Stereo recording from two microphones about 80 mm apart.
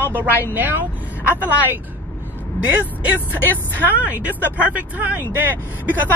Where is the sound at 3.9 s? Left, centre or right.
Right.